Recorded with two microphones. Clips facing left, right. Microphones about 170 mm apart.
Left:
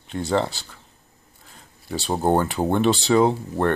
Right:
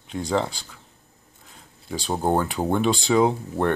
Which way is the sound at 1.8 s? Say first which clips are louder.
Left 2 dB; 5° left (ahead or behind).